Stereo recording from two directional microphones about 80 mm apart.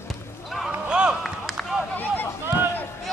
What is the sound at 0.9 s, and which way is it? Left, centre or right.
Run, centre.